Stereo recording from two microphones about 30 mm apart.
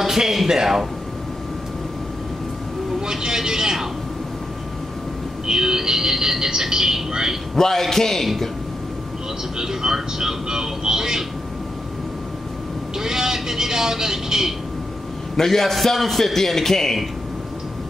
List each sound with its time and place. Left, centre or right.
0.0 s speech: centre
3.1 s a man's voice: centre
5.5 s speech: centre
7.5 s a man's voice: centre
9.6 s a man's voice: centre
13.0 s speech: centre
15.3 s a man's voice: centre